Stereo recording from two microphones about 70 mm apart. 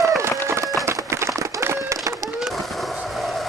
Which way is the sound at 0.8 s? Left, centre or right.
Right.